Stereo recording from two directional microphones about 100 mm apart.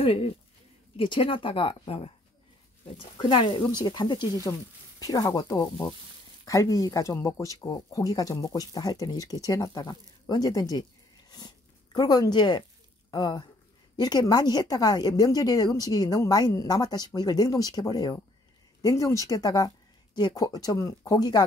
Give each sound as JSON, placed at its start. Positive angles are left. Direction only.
{"t": 0.0, "sound": "speech", "side_deg": 70}
{"t": 0.9, "sound": "a woman's voice", "side_deg": 60}
{"t": 3.2, "sound": "speech", "side_deg": 50}